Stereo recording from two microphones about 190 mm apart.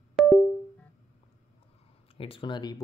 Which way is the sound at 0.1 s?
Centre (ahead or behind).